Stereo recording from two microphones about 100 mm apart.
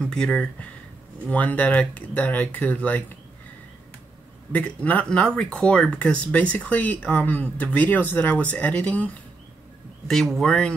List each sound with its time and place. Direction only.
0.0 s speech: 10° left (ahead or behind)
4.5 s speech: 15° left (ahead or behind)
10.0 s speech: centre (ahead or behind)